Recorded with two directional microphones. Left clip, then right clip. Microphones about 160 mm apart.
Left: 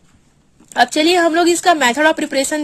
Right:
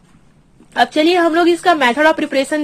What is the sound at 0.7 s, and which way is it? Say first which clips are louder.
A woman's voice: even; 45° left (ahead or behind).